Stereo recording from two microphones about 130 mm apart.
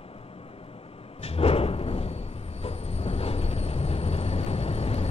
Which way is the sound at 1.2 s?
50° left (ahead or behind).